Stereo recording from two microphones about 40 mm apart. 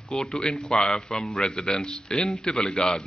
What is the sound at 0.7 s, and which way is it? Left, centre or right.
Speech, left.